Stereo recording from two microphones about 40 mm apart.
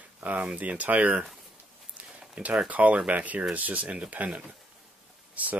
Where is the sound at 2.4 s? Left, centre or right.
Right.